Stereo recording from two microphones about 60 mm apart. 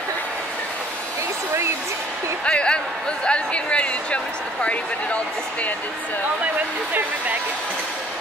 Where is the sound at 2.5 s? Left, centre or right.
Centre.